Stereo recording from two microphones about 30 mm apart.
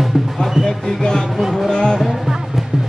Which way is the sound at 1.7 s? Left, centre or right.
Left.